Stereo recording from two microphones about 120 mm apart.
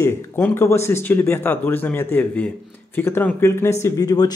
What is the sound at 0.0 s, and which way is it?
A man's voice, 20° left (ahead or behind).